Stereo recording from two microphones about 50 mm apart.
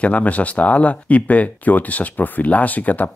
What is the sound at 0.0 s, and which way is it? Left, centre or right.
Speech, left.